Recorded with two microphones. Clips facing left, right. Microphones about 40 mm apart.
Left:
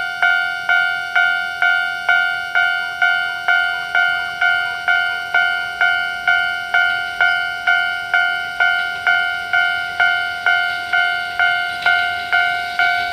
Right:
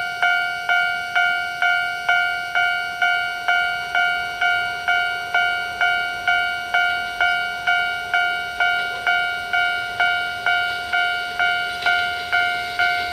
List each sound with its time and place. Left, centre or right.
0.2 s music: left